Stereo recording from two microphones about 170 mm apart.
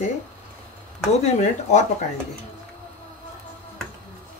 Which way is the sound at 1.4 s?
45° left (ahead or behind).